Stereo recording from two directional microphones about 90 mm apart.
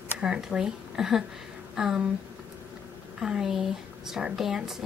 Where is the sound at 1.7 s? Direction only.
5° right (ahead or behind).